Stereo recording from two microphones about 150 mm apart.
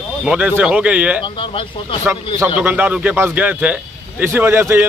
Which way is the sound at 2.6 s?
10° right (ahead or behind).